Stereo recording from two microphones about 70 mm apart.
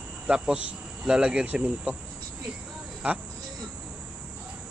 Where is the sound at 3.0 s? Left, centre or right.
Centre.